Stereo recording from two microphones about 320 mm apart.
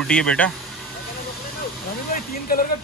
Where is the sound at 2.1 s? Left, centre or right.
Left.